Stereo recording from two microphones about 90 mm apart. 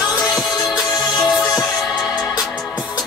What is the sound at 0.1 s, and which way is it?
Music, 40° left (ahead or behind).